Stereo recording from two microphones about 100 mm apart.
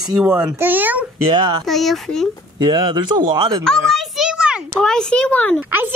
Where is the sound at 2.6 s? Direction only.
45° right (ahead or behind).